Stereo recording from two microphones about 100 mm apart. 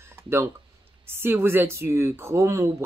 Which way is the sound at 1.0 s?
25° right (ahead or behind).